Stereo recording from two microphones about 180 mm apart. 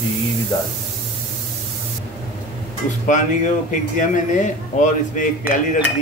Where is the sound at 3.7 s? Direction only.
45° left (ahead or behind).